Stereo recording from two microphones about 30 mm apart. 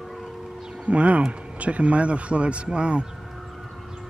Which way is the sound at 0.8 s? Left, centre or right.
Right.